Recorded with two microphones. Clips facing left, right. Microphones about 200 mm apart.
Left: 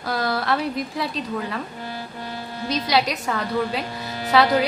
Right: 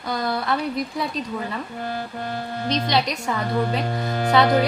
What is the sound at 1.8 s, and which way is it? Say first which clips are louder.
Speech: right 4 dB; 55° right (ahead or behind).